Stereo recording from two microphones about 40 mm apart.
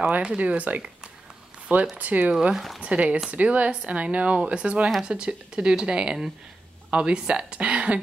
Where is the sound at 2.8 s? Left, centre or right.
Right.